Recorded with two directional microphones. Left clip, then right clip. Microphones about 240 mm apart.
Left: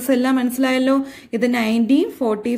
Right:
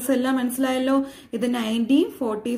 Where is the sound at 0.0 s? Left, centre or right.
Left.